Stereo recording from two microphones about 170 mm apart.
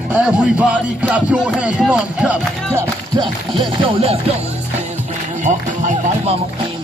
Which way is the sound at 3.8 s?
35° right (ahead or behind).